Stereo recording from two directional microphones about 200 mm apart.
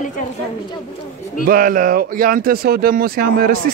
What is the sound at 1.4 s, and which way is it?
Speech, 45° right (ahead or behind).